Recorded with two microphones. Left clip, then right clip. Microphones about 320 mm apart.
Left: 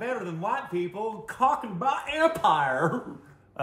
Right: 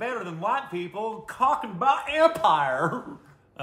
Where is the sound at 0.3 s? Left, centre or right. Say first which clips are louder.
Right 2 dB; centre.